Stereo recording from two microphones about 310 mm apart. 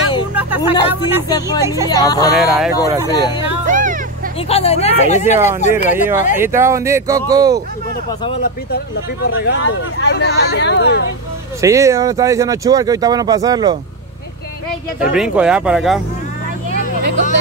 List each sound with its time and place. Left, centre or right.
0.3 s speech: centre
1.9 s speech: centre
2.3 s speech: centre
3.1 s speech: centre
3.6 s a sound: right
4.5 s speech: centre
5.2 s speech: centre
8.7 s speech: left
11.6 s speech: centre
15.0 s speech: centre